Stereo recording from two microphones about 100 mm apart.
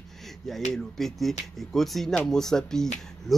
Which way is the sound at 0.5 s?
Centre (ahead or behind).